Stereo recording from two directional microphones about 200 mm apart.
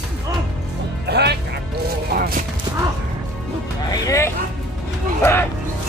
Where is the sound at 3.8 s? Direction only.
15° left (ahead or behind).